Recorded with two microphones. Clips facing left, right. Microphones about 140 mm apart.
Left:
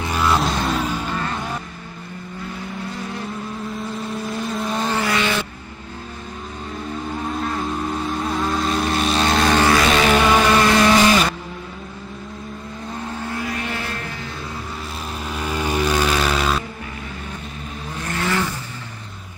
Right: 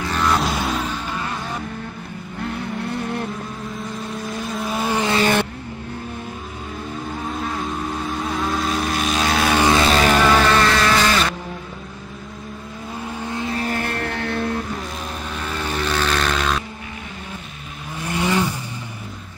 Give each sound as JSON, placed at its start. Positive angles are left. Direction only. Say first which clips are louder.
{"t": 0.0, "sound": "music", "louder": "left 1 dB", "side_deg": 10}
{"t": 2.4, "sound": "vehicle", "louder": "right 5 dB", "side_deg": -65}
{"t": 4.1, "sound": "vehicle", "louder": "left 2 dB", "side_deg": 0}
{"t": 5.2, "sound": "music", "louder": "right 4 dB", "side_deg": -50}
{"t": 7.2, "sound": "vehicle", "louder": "left 2 dB", "side_deg": 0}
{"t": 9.7, "sound": "music", "louder": "even", "side_deg": -30}
{"t": 10.3, "sound": "vehicle", "louder": "left 1 dB", "side_deg": 15}
{"t": 13.2, "sound": "vehicle", "louder": "right 3 dB", "side_deg": -20}
{"t": 13.7, "sound": "music", "louder": "right 4 dB", "side_deg": -55}
{"t": 15.3, "sound": "vehicle", "louder": "left 4 dB", "side_deg": 10}
{"t": 18.0, "sound": "vehicle", "louder": "right 3 dB", "side_deg": -15}